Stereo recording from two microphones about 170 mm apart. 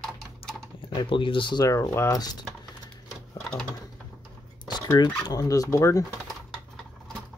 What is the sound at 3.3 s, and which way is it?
Sewing machine, 5° left (ahead or behind).